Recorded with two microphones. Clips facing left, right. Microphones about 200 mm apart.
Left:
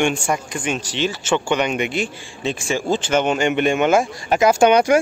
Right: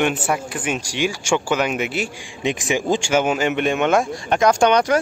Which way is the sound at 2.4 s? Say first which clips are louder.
Right 1 dB; 15° right (ahead or behind).